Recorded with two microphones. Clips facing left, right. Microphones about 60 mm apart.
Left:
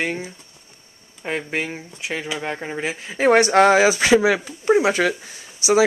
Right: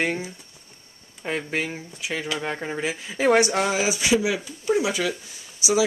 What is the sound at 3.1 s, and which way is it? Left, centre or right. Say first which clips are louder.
Speech: left 5 dB; left.